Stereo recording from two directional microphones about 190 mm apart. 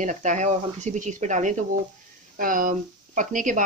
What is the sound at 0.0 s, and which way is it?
Speech, 40° right (ahead or behind).